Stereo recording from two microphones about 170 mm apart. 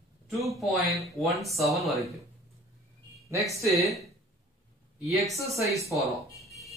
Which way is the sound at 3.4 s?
20° right (ahead or behind).